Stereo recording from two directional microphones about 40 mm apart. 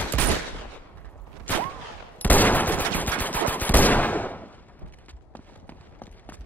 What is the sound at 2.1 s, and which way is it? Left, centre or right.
Machine gun, left.